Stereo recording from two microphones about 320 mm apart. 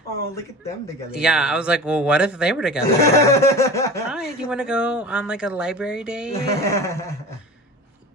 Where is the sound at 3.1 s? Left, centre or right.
Centre.